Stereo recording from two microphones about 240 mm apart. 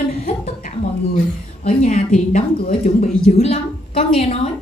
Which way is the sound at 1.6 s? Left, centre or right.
Left.